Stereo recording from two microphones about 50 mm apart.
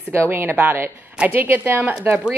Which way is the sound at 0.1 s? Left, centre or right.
Right.